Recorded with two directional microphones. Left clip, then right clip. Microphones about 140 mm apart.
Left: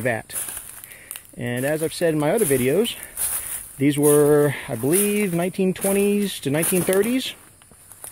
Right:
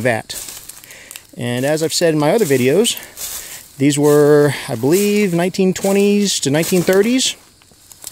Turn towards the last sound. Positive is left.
turn(degrees=-60)  # may be behind; listen again after turning